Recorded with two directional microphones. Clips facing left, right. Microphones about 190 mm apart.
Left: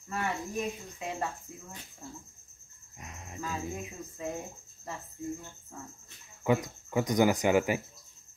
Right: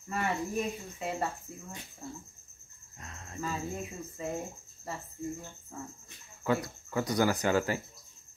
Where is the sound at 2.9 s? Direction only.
15° left (ahead or behind).